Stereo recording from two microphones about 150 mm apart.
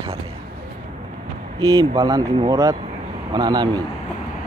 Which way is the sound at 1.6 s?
25° right (ahead or behind).